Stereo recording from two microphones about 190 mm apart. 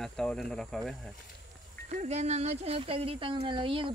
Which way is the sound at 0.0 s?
5° left (ahead or behind).